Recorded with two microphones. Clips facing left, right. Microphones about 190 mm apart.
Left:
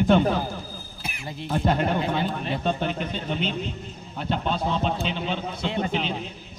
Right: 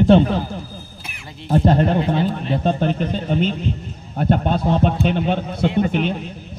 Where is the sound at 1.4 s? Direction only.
35° right (ahead or behind).